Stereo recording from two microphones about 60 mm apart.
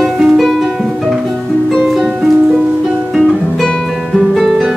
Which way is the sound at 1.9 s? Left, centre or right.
Centre.